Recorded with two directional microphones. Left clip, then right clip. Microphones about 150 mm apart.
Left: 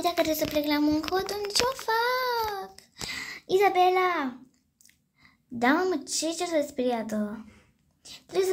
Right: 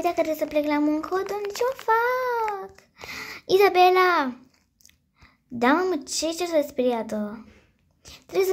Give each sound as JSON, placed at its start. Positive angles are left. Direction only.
{"t": 0.0, "sound": "a child's voice", "side_deg": -10}
{"t": 1.9, "sound": "child singing", "side_deg": -10}
{"t": 2.5, "sound": "a sound", "side_deg": -10}
{"t": 4.8, "sound": "speech", "side_deg": -20}